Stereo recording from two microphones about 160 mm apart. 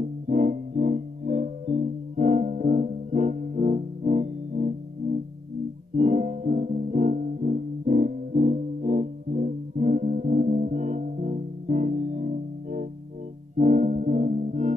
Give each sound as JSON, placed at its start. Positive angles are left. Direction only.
{"t": 0.0, "sound": "music", "side_deg": -55}